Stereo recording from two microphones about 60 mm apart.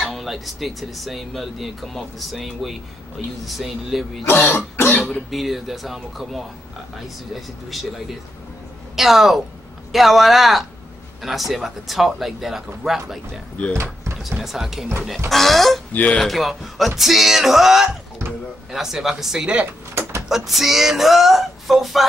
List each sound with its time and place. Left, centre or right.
0.0 s speech: centre
4.3 s throat clearing: left
4.7 s cough: left
5.3 s speech: centre
8.9 s speech: centre
15.9 s speech: left
16.2 s speech: centre
19.9 s a sound: right
20.2 s speech: centre